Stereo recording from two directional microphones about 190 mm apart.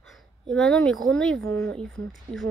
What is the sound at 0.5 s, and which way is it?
Speech, 5° left (ahead or behind).